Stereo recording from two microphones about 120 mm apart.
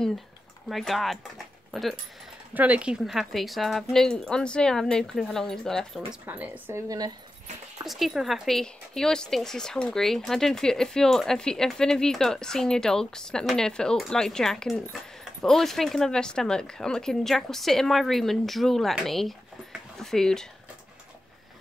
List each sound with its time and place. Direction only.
0.7 s speech: centre (ahead or behind)
2.5 s speech: 10° right (ahead or behind); by 6.0 s 5° left (ahead or behind)
6.2 s speech: 15° right (ahead or behind)
7.8 s speech: centre (ahead or behind)